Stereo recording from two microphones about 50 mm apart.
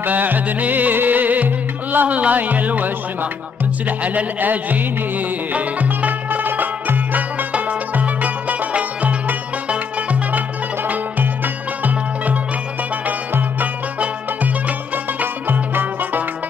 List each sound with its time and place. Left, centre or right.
0.0 s music: right
4.0 s music: right
10.9 s music: right
15.1 s music: right